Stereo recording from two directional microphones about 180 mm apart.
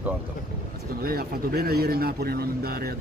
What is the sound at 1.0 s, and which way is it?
Speech, 55° right (ahead or behind).